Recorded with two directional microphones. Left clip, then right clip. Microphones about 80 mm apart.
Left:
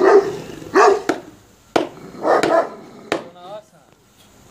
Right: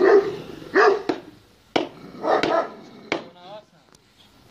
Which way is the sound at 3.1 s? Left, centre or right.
Centre.